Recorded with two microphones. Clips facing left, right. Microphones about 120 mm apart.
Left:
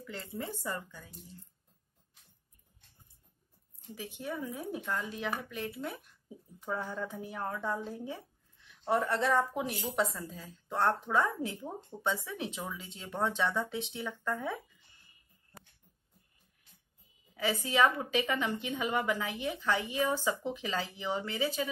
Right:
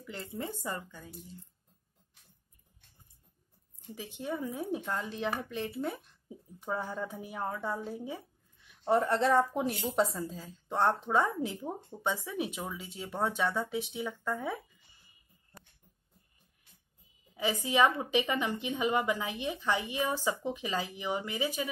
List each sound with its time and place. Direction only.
0.0 s a woman's voice: 15° right (ahead or behind)
3.9 s a woman's voice: 20° right (ahead or behind)
8.8 s speech: 25° right (ahead or behind)
10.1 s a woman's voice: 25° right (ahead or behind)
17.4 s a woman's voice: 15° right (ahead or behind)